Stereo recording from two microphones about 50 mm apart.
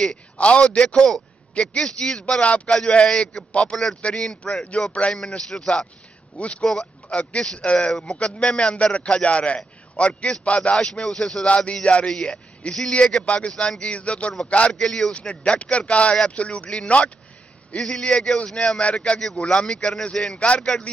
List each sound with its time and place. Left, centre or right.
0.0 s a man's voice: left
1.5 s speech: left
2.4 s a man's voice: left
4.7 s a man's voice: left
6.3 s a man's voice: left
6.6 s speech: centre
7.5 s a man's voice: left
10.9 s speech: centre
11.4 s a man's voice: left
12.1 s a man's voice: centre
14.7 s a man's voice: centre
20.3 s a man's voice: left